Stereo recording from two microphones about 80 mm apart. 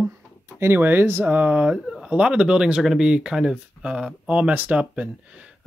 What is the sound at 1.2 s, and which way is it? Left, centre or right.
Speech, centre.